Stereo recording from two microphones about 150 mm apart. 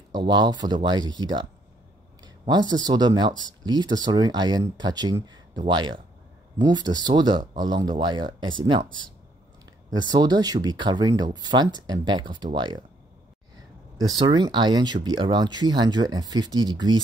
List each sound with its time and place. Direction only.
0.1 s speech: 30° right (ahead or behind)
9.8 s speech: 25° right (ahead or behind)
14.1 s speech: 30° right (ahead or behind)